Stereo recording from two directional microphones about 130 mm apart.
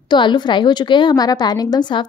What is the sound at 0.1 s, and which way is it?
A woman's voice, 35° left (ahead or behind).